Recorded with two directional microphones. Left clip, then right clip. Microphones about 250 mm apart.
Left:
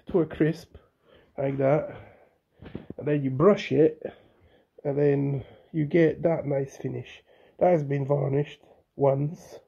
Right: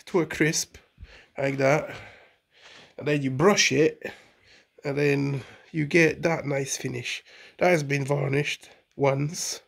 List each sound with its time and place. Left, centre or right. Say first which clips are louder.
0.0 s speech: right 1 dB; centre